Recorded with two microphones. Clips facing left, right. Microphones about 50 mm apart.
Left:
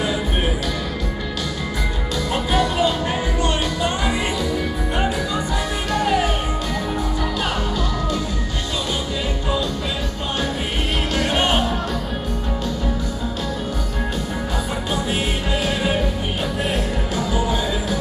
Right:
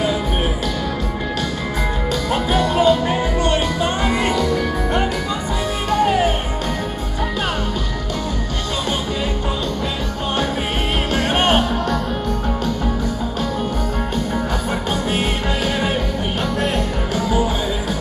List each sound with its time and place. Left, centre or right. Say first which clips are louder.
2.3 s music: right 2 dB; right
4.1 s music: right 4 dB; centre
5.9 s music: right 3 dB; right
11.1 s music: right 3 dB; right
17.3 s music: right 2 dB; right